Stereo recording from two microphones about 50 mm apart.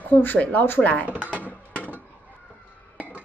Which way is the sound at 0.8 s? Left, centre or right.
Left.